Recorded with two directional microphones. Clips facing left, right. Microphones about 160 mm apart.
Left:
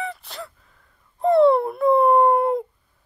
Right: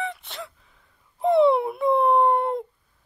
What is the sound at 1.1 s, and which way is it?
Dog, centre (ahead or behind).